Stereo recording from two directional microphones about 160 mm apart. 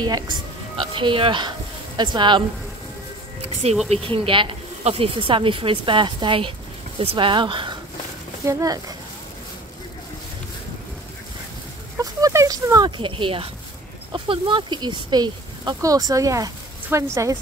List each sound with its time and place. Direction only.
0.0 s speech: 25° right (ahead or behind)
3.9 s speech: 35° right (ahead or behind)
12.0 s speech: 20° right (ahead or behind)